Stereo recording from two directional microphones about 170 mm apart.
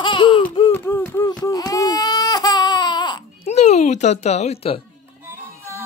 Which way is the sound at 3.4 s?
40° left (ahead or behind).